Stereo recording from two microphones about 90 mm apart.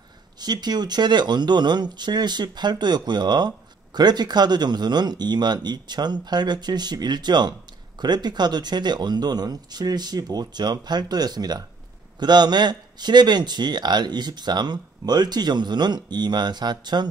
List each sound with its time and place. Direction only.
0.4 s speech: 50° right (ahead or behind)